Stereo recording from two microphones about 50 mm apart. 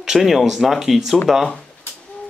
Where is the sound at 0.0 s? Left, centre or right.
Centre.